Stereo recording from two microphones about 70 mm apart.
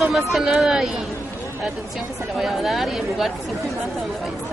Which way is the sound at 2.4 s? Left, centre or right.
Centre.